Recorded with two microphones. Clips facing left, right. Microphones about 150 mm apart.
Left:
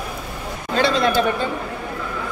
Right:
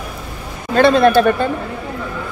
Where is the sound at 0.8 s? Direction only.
55° right (ahead or behind).